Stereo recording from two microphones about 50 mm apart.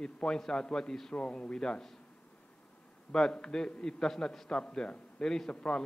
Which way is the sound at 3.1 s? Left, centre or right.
Centre.